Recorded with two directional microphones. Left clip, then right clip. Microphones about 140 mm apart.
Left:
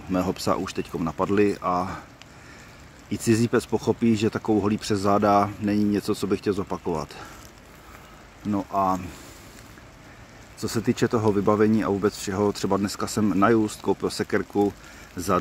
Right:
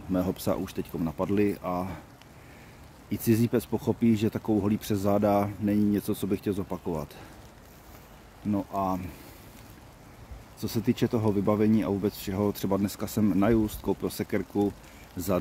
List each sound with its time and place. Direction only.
0.1 s speech: 20° right (ahead or behind)
0.9 s speech: 5° right (ahead or behind)
3.3 s speech: 15° right (ahead or behind)
6.6 s speech: centre (ahead or behind)
8.5 s speech: centre (ahead or behind)
10.7 s speech: 15° right (ahead or behind)